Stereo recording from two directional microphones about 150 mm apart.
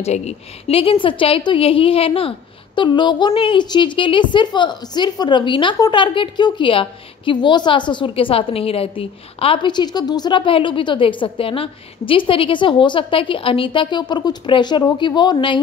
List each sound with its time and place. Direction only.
0.0 s a woman's voice: 45° left (ahead or behind); by 15.6 s 30° left (ahead or behind)